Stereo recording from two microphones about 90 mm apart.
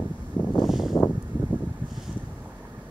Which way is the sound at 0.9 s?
20° left (ahead or behind).